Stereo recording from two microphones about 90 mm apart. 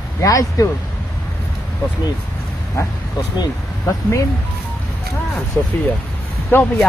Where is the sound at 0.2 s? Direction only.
40° left (ahead or behind).